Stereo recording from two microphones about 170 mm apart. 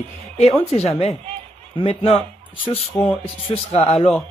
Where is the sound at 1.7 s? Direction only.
35° left (ahead or behind).